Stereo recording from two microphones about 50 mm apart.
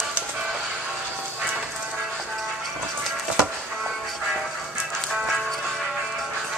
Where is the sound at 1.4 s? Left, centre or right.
Centre.